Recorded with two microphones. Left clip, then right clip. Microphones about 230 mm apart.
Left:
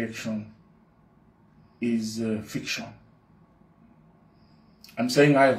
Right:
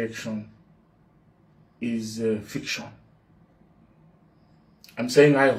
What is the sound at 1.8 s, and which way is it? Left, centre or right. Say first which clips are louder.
Speech: left 1 dB; centre.